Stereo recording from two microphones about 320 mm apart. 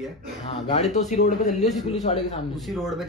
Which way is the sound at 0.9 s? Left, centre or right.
Left.